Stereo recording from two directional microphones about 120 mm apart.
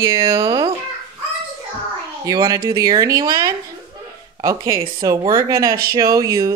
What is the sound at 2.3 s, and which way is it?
Speech, 35° right (ahead or behind).